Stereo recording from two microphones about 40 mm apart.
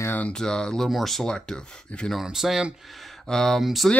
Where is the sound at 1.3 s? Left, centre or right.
Left.